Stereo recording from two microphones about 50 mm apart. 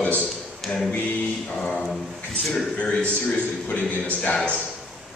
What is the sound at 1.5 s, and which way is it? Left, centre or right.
Speech, left.